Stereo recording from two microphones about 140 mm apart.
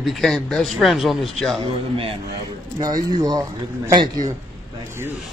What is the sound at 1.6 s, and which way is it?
Speech, 40° right (ahead or behind).